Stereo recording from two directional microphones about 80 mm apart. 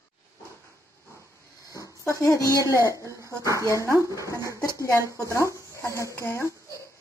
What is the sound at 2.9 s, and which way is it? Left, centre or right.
Speech, right.